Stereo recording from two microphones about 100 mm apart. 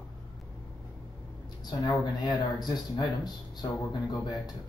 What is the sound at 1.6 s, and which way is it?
Speech, 40° left (ahead or behind).